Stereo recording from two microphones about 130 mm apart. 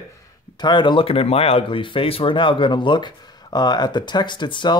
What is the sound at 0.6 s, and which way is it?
Speech, 35° left (ahead or behind).